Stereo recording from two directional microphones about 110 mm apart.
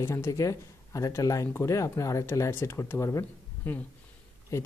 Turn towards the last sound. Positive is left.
turn(degrees=25)  # may be behind; listen again after turning